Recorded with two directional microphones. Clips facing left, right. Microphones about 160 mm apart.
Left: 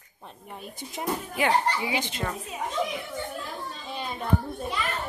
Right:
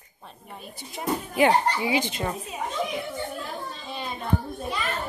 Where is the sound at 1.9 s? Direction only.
15° right (ahead or behind).